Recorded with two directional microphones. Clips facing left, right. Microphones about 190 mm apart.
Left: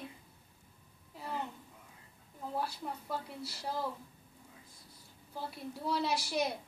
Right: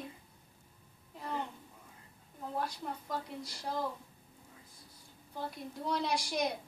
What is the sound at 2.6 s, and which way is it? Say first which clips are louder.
A woman's voice: even; 5° left (ahead or behind).